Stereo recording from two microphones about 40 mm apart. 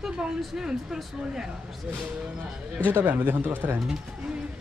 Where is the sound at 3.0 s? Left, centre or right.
Right.